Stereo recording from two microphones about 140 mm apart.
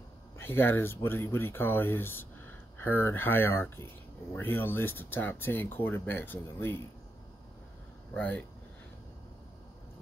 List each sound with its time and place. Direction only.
0.4 s speech: 15° left (ahead or behind)
8.1 s speech: 10° left (ahead or behind)